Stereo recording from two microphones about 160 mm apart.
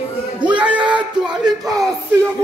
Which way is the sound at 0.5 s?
10° right (ahead or behind).